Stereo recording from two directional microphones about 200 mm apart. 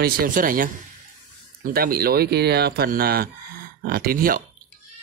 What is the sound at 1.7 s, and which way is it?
Speech, 50° right (ahead or behind).